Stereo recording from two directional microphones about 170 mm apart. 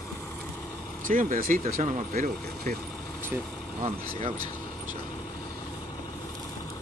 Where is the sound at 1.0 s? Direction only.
50° right (ahead or behind).